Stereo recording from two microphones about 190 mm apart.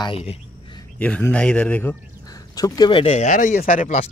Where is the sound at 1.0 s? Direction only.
5° left (ahead or behind).